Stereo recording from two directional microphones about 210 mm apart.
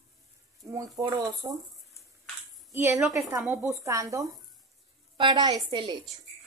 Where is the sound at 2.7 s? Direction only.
10° right (ahead or behind).